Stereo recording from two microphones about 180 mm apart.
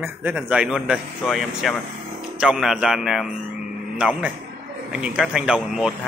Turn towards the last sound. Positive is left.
turn(degrees=-5)  # may be behind; listen again after turning